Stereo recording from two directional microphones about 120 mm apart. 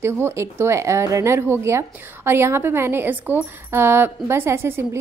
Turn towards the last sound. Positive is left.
turn(degrees=-20)  # may be behind; listen again after turning